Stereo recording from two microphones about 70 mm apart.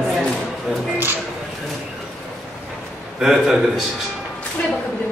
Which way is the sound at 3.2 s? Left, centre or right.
Centre.